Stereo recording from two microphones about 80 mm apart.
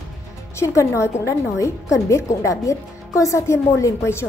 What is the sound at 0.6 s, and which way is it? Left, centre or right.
A woman's voice, left.